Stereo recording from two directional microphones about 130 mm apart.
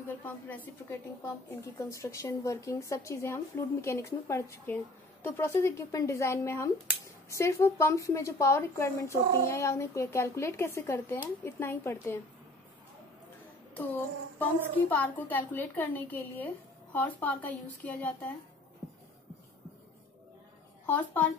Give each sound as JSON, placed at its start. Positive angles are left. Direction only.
{"t": 0.8, "sound": "a woman's voice", "side_deg": 20}
{"t": 13.7, "sound": "a woman's voice", "side_deg": 15}
{"t": 20.8, "sound": "speech", "side_deg": 15}